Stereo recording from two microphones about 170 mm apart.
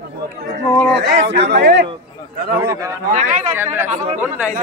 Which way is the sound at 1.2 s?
85° right.